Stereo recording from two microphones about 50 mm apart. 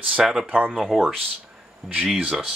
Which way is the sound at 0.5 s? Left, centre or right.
Right.